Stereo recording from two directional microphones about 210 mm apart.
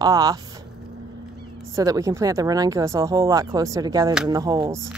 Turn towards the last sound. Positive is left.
turn(degrees=-15)  # may be behind; listen again after turning